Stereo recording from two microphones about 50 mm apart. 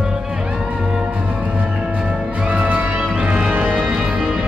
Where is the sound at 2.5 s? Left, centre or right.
Right.